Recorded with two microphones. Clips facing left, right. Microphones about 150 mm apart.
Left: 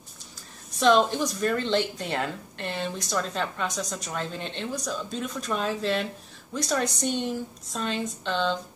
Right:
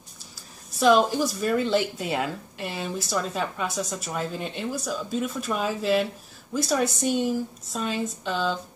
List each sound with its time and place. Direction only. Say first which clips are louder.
0.7 s speech: right 1 dB; 5° right (ahead or behind)